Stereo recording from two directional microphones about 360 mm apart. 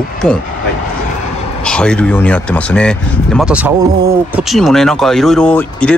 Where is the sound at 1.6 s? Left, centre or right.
Centre.